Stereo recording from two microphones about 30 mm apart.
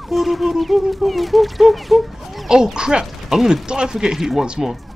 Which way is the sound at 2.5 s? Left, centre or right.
Right.